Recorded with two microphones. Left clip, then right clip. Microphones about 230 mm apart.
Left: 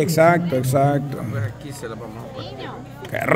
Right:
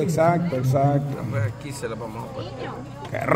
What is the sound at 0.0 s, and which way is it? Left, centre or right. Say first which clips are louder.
Speech: left 5 dB; left.